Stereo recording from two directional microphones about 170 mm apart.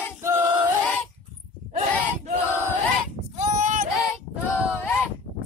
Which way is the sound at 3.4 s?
50° right (ahead or behind).